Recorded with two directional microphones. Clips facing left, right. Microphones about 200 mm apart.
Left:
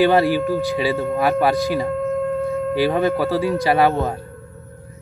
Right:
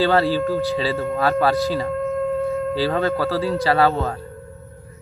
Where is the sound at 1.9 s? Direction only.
Centre (ahead or behind).